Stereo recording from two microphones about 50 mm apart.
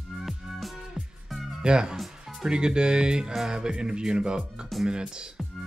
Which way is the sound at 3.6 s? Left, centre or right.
Centre.